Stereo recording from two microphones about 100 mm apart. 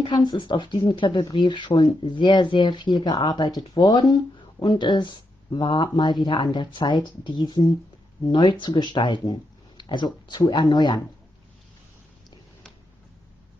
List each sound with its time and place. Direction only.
0.0 s speech: 50° left (ahead or behind)